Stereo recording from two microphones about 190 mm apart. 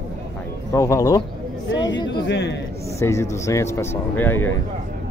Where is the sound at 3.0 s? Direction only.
15° left (ahead or behind).